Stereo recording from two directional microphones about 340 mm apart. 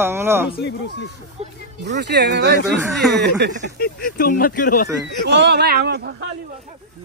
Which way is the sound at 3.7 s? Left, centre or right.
Left.